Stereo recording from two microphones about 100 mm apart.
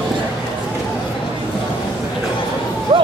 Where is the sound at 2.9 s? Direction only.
70° right (ahead or behind).